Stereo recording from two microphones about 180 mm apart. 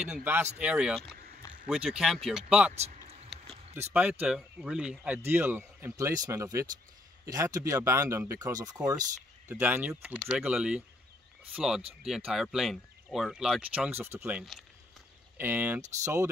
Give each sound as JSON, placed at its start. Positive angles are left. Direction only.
{"t": 0.0, "sound": "speech", "side_deg": -5}
{"t": 2.7, "sound": "speech", "side_deg": -35}
{"t": 3.3, "sound": "a sound", "side_deg": 0}
{"t": 3.9, "sound": "speech", "side_deg": -5}